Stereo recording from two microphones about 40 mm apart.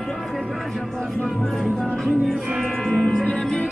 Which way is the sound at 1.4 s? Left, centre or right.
Centre.